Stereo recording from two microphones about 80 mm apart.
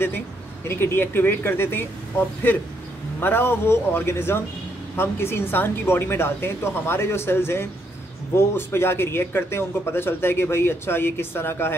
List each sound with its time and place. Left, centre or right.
0.7 s speech: left